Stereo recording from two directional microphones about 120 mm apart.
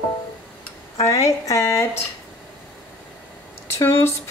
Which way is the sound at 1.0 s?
30° left (ahead or behind).